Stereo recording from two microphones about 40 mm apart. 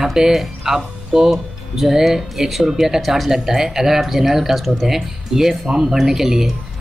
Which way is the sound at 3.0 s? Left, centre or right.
Centre.